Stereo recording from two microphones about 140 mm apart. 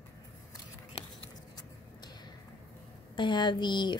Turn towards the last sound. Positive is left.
turn(degrees=35)  # may be behind; listen again after turning